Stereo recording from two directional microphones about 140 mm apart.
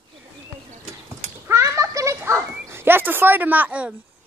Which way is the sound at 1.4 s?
20° right (ahead or behind).